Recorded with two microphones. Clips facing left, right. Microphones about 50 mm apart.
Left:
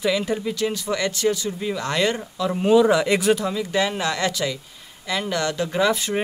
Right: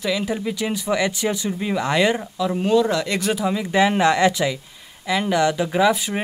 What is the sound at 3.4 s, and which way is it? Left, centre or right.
Speech, centre.